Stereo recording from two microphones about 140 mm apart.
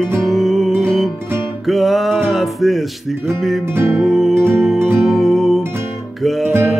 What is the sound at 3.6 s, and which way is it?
Music, 15° right (ahead or behind).